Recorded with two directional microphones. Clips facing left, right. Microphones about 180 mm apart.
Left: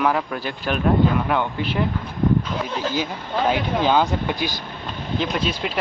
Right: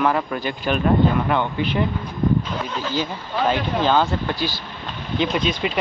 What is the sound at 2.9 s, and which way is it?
Speech, 10° left (ahead or behind).